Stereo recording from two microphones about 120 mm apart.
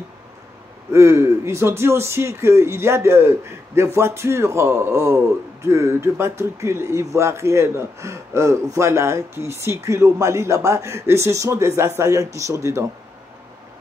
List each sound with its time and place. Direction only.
0.9 s speech: 20° right (ahead or behind)